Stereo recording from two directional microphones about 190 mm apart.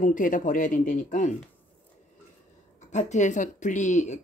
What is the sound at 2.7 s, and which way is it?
A woman's voice, 40° left (ahead or behind).